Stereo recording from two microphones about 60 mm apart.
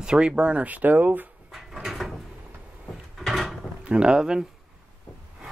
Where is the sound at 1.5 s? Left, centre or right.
Centre.